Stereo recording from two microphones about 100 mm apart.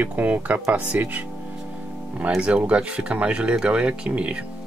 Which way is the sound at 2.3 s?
10° right (ahead or behind).